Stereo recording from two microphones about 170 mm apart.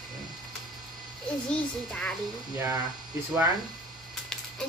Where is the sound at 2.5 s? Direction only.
20° right (ahead or behind).